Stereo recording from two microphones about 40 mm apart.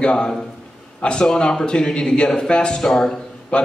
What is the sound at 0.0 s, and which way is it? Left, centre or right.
A man's voice, left.